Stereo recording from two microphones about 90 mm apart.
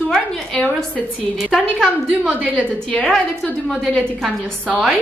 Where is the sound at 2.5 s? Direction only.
10° left (ahead or behind).